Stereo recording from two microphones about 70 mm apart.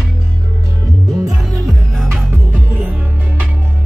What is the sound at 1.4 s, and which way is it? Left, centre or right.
Music, centre.